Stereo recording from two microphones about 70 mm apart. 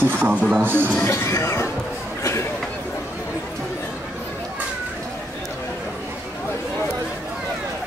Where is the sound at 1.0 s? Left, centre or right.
Left.